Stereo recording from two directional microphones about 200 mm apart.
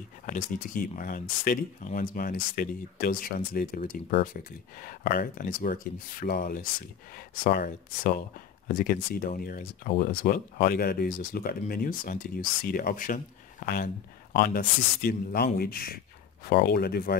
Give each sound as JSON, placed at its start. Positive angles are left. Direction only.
{"t": 0.3, "sound": "speech", "side_deg": 40}